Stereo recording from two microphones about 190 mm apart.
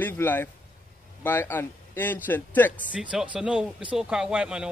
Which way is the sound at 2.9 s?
5° right (ahead or behind).